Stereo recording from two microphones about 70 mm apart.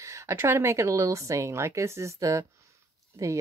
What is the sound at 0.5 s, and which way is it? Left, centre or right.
Speech, right.